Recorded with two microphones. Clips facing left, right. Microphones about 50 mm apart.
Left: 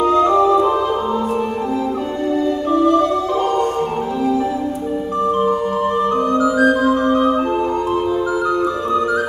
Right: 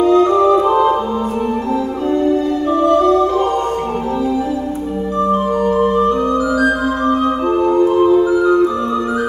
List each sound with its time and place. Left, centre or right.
0.1 s music: centre
0.5 s music: centre
6.6 s music: left